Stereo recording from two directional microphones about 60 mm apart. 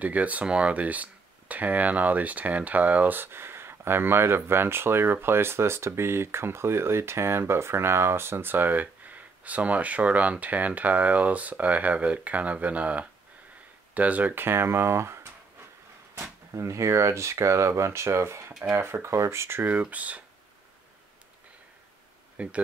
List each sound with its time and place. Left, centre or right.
0.0 s speech: right
16.5 s speech: right
22.4 s speech: right